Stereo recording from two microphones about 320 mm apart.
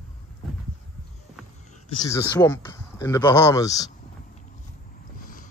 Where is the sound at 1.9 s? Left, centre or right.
Centre.